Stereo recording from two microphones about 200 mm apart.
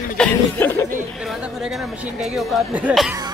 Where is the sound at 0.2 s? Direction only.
10° left (ahead or behind).